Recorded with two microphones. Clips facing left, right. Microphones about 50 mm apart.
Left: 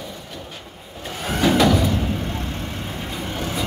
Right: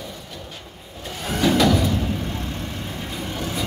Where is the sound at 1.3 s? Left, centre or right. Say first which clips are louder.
Left 1 dB; left.